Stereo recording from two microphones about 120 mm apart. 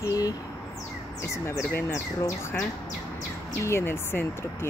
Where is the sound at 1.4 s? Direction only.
25° left (ahead or behind).